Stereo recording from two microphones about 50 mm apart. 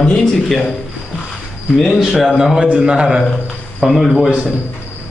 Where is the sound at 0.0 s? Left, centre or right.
Left.